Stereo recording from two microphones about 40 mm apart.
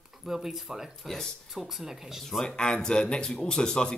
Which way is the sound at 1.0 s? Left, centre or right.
Centre.